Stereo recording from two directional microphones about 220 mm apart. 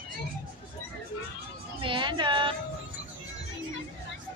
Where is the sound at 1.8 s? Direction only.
20° right (ahead or behind).